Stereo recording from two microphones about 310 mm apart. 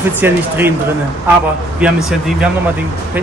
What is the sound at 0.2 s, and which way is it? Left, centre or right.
Speech, centre.